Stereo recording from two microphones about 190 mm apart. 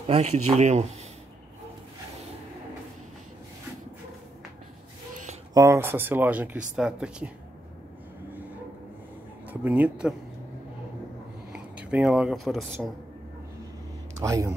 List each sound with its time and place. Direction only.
0.0 s speech: 35° right (ahead or behind)
5.5 s speech: 15° right (ahead or behind)
9.5 s speech: 10° right (ahead or behind)
11.5 s speech: 5° right (ahead or behind)
14.2 s speech: 15° right (ahead or behind)